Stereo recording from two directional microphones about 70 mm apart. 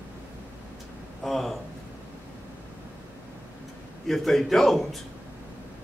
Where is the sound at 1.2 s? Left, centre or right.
Centre.